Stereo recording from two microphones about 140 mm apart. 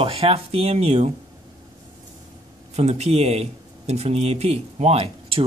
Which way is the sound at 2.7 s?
50° right (ahead or behind).